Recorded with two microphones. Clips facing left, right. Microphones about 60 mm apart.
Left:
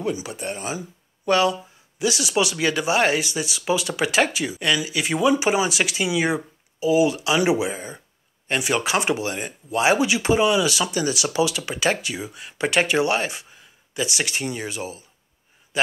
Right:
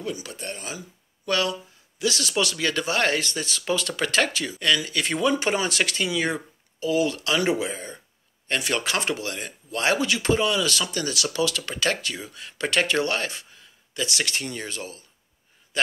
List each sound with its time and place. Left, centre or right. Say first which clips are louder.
0.0 s a man's voice: left 5 dB; left